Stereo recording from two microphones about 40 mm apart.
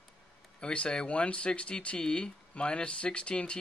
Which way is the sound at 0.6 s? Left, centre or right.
Left.